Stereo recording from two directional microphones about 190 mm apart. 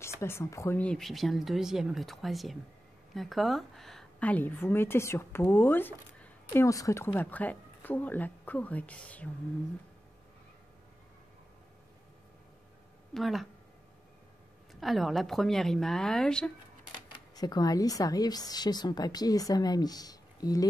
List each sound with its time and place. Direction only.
0.0 s a woman's voice: 15° left (ahead or behind)
13.1 s speech: centre (ahead or behind)
14.7 s speech: centre (ahead or behind)
17.1 s speech: 20° left (ahead or behind)